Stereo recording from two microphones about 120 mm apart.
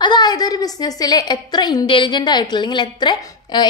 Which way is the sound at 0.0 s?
35° left (ahead or behind).